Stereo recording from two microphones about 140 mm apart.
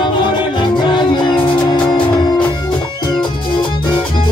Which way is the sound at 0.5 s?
35° left (ahead or behind).